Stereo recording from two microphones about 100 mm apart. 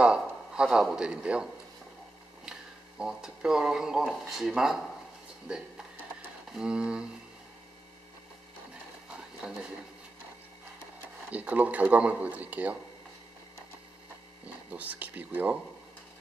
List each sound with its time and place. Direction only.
0.0 s speech: 10° right (ahead or behind)
3.0 s speech: 5° right (ahead or behind)
9.4 s speech: 10° right (ahead or behind)
11.2 s speech: 15° right (ahead or behind)
14.7 s speech: 15° right (ahead or behind)